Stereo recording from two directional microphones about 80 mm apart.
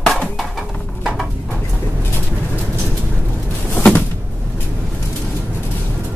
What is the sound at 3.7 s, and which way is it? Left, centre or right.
Cupboard open or close, left.